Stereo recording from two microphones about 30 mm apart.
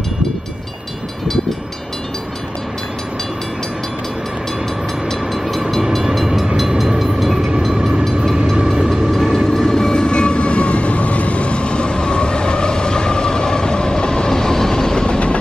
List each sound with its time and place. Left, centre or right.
6.1 s train: centre
8.6 s vehicle: centre
9.5 s train: centre
9.9 s train: left